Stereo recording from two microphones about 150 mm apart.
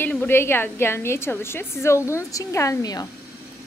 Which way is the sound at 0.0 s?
10° left (ahead or behind).